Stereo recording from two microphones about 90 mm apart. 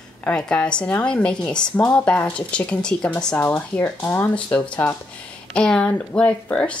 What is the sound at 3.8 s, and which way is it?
A woman's voice, 25° left (ahead or behind).